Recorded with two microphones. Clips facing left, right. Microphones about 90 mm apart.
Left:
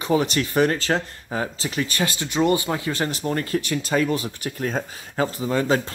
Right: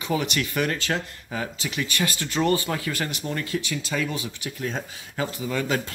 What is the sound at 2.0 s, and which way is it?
Speech, 20° left (ahead or behind).